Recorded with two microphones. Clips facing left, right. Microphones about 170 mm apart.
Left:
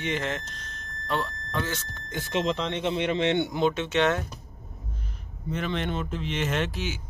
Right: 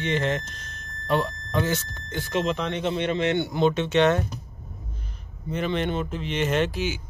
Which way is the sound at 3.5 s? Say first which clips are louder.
Right 3 dB; 5° left (ahead or behind).